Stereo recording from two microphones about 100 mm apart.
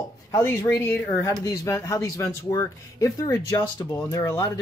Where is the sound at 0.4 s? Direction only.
25° left (ahead or behind).